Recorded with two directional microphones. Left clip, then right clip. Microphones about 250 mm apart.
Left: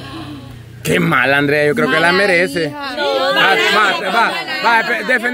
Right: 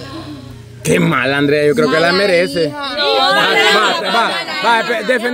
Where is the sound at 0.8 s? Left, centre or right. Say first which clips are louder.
Left 1 dB; centre.